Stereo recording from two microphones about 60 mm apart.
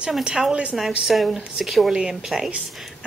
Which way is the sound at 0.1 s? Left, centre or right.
Centre.